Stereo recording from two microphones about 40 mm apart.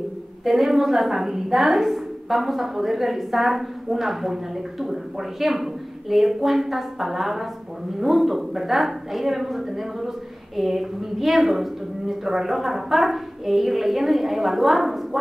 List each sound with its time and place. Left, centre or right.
0.5 s a woman's voice: centre